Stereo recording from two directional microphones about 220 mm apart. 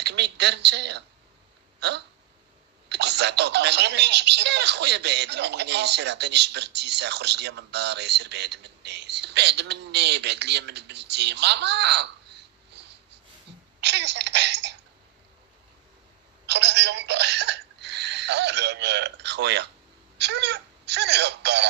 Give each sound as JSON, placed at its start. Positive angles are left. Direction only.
{"t": 0.0, "sound": "speech", "side_deg": -50}
{"t": 13.7, "sound": "throat clearing", "side_deg": -50}
{"t": 16.4, "sound": "speech", "side_deg": -50}